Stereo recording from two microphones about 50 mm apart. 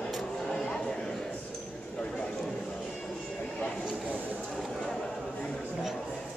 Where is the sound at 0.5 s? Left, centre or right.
Centre.